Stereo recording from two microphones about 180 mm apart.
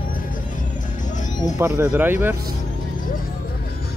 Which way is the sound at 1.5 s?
15° right (ahead or behind).